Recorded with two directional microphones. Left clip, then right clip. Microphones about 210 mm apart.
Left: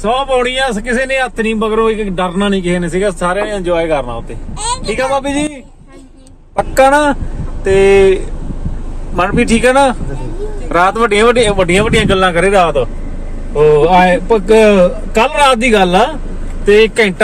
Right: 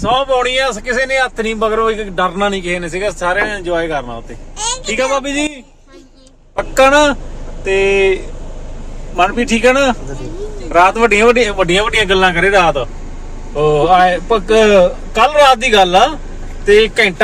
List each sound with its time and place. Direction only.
0.2 s a man's voice: 5° left (ahead or behind)
6.5 s a man's voice: 15° left (ahead or behind)